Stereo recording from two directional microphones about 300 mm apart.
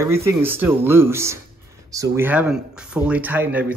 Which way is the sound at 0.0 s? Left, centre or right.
Centre.